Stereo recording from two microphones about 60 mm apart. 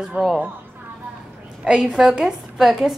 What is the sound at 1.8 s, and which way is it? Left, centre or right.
A woman's voice, centre.